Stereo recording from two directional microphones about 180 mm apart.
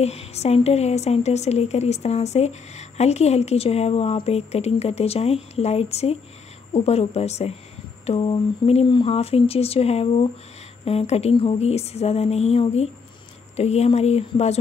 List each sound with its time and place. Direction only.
0.0 s a woman's voice: 35° left (ahead or behind)